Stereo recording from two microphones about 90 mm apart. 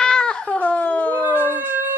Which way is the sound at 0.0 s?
10° left (ahead or behind).